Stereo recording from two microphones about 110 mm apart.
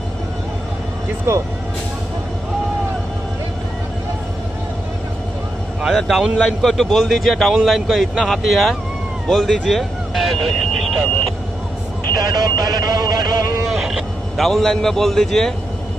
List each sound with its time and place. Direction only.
5.8 s speech: centre (ahead or behind)
12.2 s speech: 35° right (ahead or behind)
13.7 s a man's voice: centre (ahead or behind)